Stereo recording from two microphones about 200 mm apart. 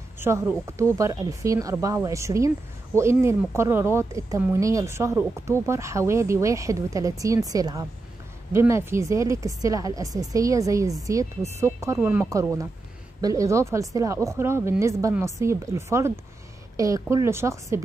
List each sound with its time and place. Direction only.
0.2 s speech: 10° right (ahead or behind)